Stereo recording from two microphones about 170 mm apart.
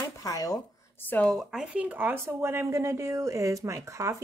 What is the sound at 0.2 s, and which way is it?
Speech, 20° left (ahead or behind).